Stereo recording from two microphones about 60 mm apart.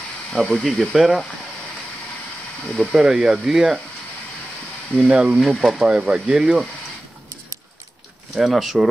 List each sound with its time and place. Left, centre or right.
0.3 s speech: centre
2.9 s speech: centre
5.0 s speech: centre
5.4 s speech: centre
8.4 s speech: centre